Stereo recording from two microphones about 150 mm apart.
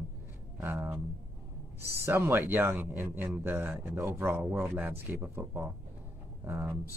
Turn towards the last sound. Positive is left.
turn(degrees=-15)  # may be behind; listen again after turning